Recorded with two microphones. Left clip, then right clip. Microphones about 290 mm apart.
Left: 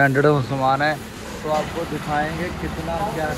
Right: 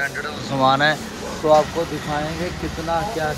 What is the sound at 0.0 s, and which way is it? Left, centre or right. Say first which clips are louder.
Speech: left 8 dB; centre.